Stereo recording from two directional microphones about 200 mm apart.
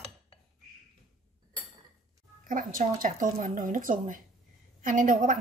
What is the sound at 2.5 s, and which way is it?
Speech, 40° right (ahead or behind).